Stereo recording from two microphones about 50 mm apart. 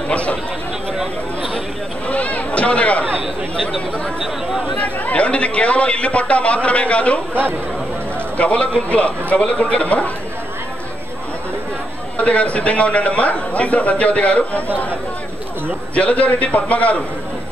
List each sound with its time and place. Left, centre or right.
0.1 s a man's voice: left
2.0 s a sound: left
4.7 s a man's voice: left
8.4 s a man's voice: left
12.2 s a man's voice: left
15.9 s a man's voice: left